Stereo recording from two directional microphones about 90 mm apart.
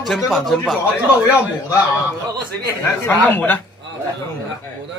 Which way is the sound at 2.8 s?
20° left (ahead or behind).